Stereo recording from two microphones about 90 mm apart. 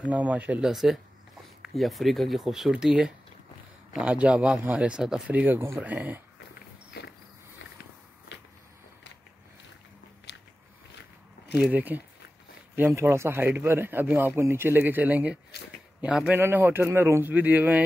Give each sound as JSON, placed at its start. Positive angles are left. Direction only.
{"t": 0.0, "sound": "speech", "side_deg": -15}
{"t": 0.7, "sound": "speech", "side_deg": -5}
{"t": 5.3, "sound": "speech", "side_deg": -20}
{"t": 11.5, "sound": "speech", "side_deg": -10}
{"t": 12.9, "sound": "speech", "side_deg": -30}
{"t": 16.3, "sound": "speech", "side_deg": -25}